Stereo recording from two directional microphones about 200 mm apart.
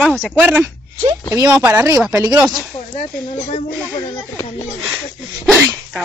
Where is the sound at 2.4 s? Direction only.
Centre (ahead or behind).